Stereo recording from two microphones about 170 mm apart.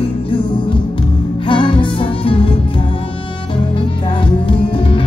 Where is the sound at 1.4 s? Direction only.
30° left (ahead or behind).